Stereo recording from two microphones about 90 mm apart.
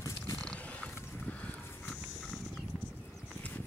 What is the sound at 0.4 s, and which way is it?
Roaring cats, 10° left (ahead or behind).